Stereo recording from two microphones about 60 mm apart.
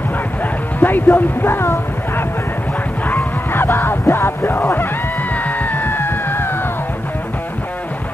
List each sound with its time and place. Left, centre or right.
0.7 s speech: left
3.1 s music: left
5.3 s music: left